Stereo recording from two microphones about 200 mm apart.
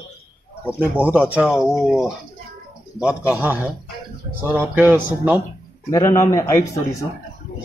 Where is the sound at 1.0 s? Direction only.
5° right (ahead or behind).